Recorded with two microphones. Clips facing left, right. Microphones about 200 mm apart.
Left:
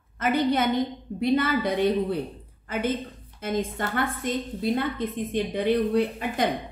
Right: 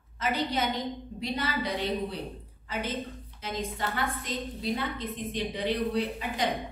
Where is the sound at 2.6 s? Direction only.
50° left (ahead or behind).